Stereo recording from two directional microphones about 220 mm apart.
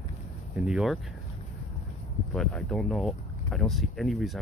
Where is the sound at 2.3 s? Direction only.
Centre (ahead or behind).